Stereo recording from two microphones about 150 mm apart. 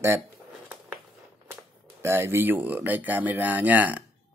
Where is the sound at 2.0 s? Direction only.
15° right (ahead or behind).